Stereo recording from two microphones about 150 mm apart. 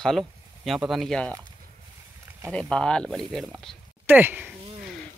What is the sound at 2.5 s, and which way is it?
Speech, 5° left (ahead or behind).